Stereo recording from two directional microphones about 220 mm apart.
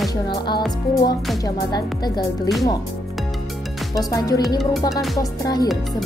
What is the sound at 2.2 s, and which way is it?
Speech, centre (ahead or behind).